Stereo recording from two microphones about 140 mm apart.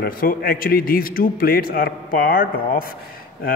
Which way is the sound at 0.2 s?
90° left.